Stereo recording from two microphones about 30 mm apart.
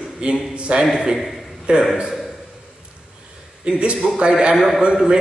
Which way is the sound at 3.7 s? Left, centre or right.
Right.